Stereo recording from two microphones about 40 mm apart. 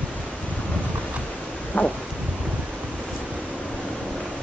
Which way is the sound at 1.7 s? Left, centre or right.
Left.